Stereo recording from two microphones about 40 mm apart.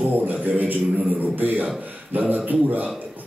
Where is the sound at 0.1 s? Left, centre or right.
Right.